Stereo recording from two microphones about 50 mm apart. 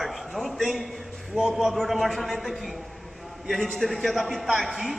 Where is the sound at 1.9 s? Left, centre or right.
Centre.